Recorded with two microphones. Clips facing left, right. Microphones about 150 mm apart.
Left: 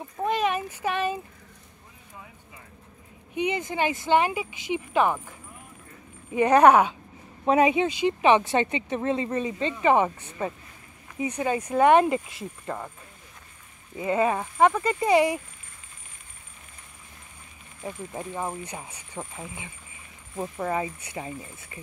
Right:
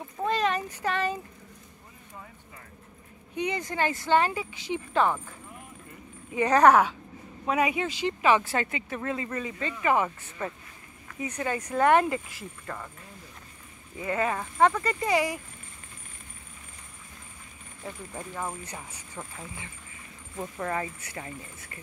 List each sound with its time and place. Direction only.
0.2 s a sound: 15° left (ahead or behind)
3.3 s speech: 20° left (ahead or behind)
6.3 s speech: 20° left (ahead or behind)
13.9 s speech: 20° left (ahead or behind)
17.8 s speech: 20° left (ahead or behind)